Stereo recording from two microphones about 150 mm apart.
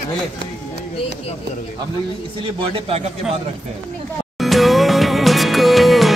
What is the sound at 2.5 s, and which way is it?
Speech, 40° right (ahead or behind).